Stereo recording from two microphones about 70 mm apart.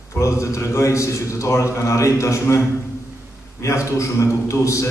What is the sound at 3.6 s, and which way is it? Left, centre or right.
A man's voice, left.